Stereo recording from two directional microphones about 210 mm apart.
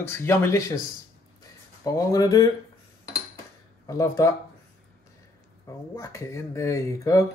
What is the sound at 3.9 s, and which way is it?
Speech, 15° left (ahead or behind).